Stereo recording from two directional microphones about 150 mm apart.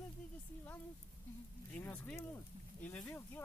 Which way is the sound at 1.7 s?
10° left (ahead or behind).